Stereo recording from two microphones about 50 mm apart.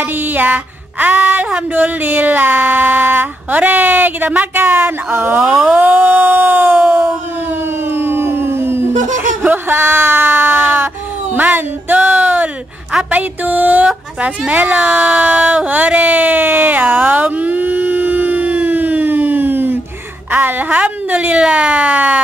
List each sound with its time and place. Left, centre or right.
0.0 s speech: right
6.9 s a sound: right
9.4 s speech: right
14.9 s a sound: right
20.2 s speech: right
21.4 s emergency vehicle: right